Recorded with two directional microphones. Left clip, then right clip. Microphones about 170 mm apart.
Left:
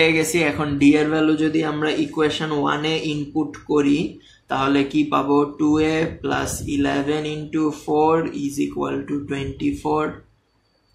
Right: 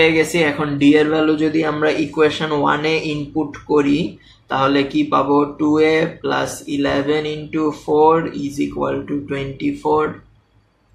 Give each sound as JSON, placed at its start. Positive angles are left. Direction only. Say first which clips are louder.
{"t": 0.0, "sound": "speech", "louder": "right 3 dB", "side_deg": 45}
{"t": 4.5, "sound": "speech", "louder": "right 3 dB", "side_deg": 35}